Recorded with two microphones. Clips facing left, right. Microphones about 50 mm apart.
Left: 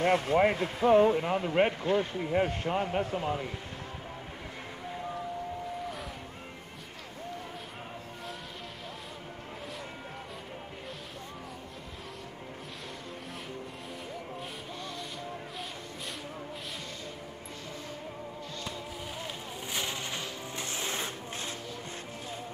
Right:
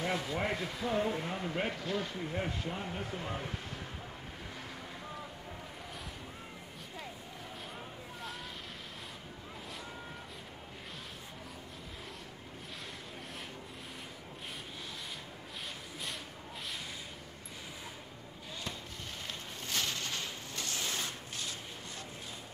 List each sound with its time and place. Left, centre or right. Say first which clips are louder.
0.0 s speech: left 10 dB; left
1.7 s speech: left 7 dB; left
2.2 s speech: left 8 dB; left
19.7 s music: left 1 dB; centre